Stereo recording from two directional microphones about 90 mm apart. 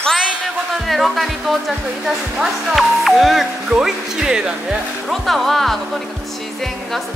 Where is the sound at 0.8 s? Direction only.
Centre (ahead or behind).